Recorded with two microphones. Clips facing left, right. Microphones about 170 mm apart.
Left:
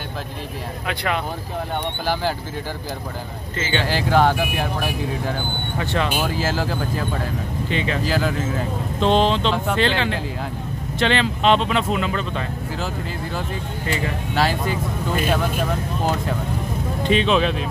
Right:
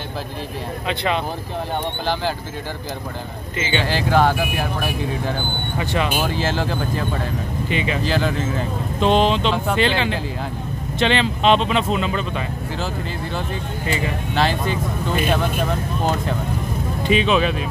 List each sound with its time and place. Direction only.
0.8 s speech: 20° right (ahead or behind)
3.5 s speech: 15° right (ahead or behind)
3.9 s speech: 15° left (ahead or behind)
5.8 s speech: 15° right (ahead or behind)
6.2 s speech: 5° left (ahead or behind)
7.7 s speech: 15° right (ahead or behind)
8.0 s speech: 5° left (ahead or behind)
9.0 s speech: 15° right (ahead or behind)
14.3 s speech: 5° left (ahead or behind)
17.0 s speech: 5° right (ahead or behind)